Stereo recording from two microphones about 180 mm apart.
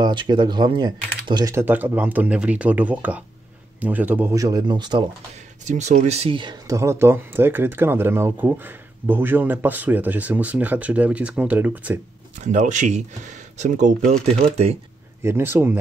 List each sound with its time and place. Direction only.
0.0 s speech: 25° right (ahead or behind)
5.7 s speech: 40° right (ahead or behind); by 12.0 s 10° right (ahead or behind)
12.4 s speech: 45° right (ahead or behind)
15.2 s speech: 15° right (ahead or behind)